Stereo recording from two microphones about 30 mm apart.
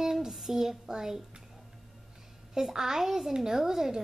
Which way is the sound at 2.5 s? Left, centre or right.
Centre.